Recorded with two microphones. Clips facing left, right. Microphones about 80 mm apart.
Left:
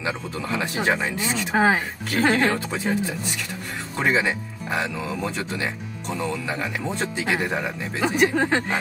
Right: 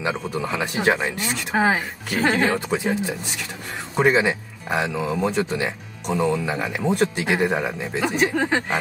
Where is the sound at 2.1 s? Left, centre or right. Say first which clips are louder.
Even; centre.